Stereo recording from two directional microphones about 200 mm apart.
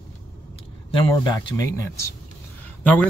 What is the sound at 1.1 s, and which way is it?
Speech, 20° left (ahead or behind).